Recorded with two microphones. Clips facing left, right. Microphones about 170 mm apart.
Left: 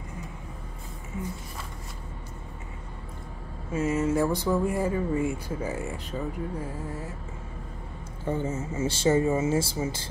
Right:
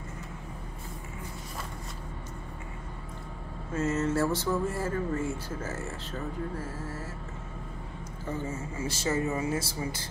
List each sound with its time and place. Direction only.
3.7 s speech: 10° left (ahead or behind)
8.3 s speech: 25° left (ahead or behind)